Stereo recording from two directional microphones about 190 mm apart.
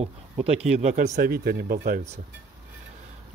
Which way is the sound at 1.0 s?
55° right (ahead or behind).